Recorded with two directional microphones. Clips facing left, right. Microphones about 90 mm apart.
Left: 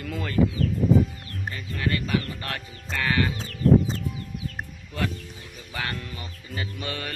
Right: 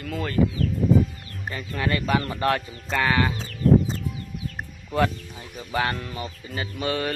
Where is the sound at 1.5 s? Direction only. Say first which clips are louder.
Right 3 dB; 40° right (ahead or behind).